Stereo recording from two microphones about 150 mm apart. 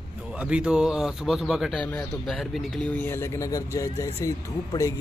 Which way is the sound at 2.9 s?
15° left (ahead or behind).